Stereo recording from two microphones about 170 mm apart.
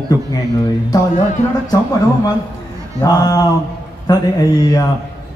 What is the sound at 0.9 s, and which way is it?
Speech, 25° left (ahead or behind).